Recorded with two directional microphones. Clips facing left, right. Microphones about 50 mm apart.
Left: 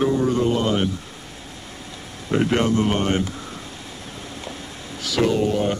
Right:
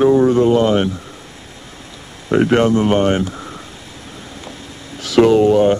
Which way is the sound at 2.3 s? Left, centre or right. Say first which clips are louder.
Right 6 dB; right.